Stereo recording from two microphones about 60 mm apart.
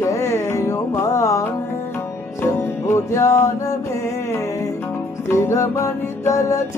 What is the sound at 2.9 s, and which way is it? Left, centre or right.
Music, left.